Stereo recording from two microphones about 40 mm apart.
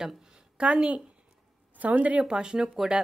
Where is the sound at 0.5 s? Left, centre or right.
Right.